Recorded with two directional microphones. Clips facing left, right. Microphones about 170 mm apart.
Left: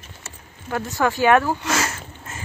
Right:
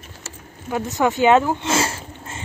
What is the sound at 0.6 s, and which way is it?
Speech, 20° right (ahead or behind).